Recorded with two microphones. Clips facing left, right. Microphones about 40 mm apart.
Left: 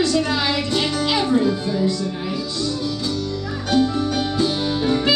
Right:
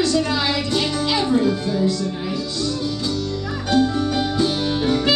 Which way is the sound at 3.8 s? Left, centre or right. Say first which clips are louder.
Even; left.